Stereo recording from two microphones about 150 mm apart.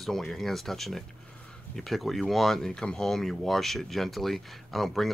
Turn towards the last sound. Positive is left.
turn(degrees=0)  # may be behind; listen again after turning